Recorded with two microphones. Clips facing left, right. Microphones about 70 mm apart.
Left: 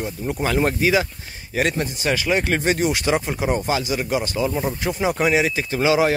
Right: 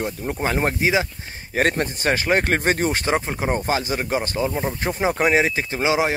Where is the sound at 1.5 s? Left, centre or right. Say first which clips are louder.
Right 1 dB; right.